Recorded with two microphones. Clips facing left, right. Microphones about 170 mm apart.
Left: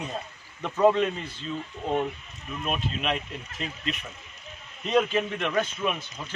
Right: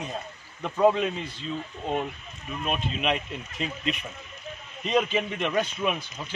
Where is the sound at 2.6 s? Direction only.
5° right (ahead or behind).